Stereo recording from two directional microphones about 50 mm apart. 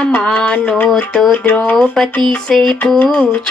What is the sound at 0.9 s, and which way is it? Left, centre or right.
Music, centre.